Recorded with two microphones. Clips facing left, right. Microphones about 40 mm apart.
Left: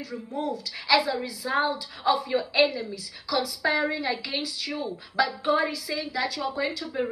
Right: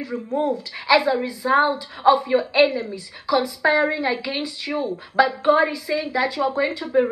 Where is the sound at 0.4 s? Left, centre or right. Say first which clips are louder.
Right 6 dB; right.